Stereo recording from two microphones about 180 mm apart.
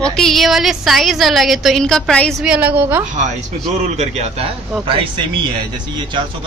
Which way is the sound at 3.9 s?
40° right (ahead or behind).